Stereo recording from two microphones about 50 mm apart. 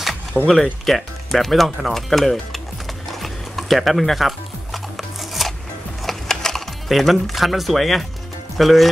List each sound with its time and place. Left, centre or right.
0.3 s speech: right
0.8 s speech: centre
3.1 s music: centre
8.5 s speech: centre